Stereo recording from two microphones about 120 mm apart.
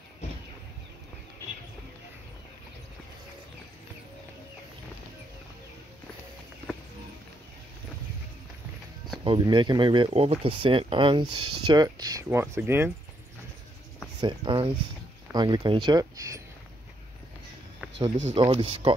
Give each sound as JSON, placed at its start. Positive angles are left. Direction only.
{"t": 9.2, "sound": "speech", "side_deg": -45}
{"t": 10.1, "sound": "speech", "side_deg": -55}
{"t": 12.3, "sound": "speech", "side_deg": -20}
{"t": 14.2, "sound": "speech", "side_deg": -40}
{"t": 17.9, "sound": "speech", "side_deg": -45}